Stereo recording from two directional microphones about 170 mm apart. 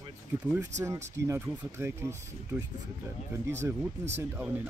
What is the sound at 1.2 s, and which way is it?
Speech, 15° right (ahead or behind).